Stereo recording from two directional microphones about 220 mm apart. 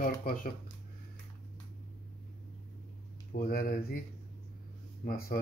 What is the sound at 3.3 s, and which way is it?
Speech, 45° left (ahead or behind).